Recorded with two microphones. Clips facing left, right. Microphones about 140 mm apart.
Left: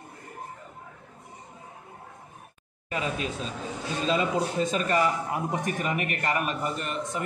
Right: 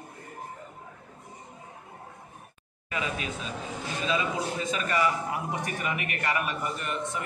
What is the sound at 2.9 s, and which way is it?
A man's voice, 40° left (ahead or behind).